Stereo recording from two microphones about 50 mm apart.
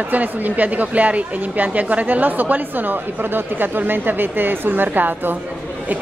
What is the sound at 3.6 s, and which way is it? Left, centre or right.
A woman's voice, right.